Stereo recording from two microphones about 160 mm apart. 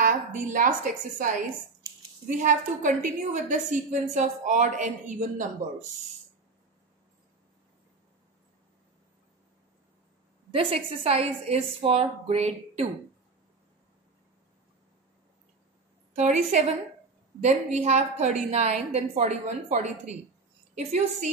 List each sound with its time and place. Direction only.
0.0 s a woman's voice: 55° right (ahead or behind)
10.5 s a woman's voice: 40° right (ahead or behind)
16.1 s a woman's voice: 45° right (ahead or behind)